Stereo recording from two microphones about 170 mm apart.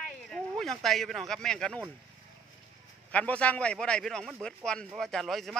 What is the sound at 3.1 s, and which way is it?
Speech, 10° left (ahead or behind).